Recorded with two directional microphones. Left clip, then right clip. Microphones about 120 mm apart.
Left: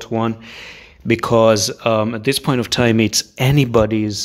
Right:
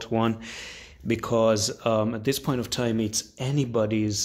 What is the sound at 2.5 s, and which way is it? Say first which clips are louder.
Speech: left 11 dB; 30° left (ahead or behind).